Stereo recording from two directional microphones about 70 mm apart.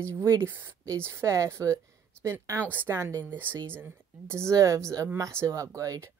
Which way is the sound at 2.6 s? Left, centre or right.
Right.